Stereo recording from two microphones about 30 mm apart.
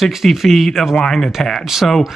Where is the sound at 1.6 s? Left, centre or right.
Centre.